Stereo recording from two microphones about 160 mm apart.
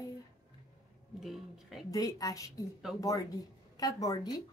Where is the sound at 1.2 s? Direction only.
Centre (ahead or behind).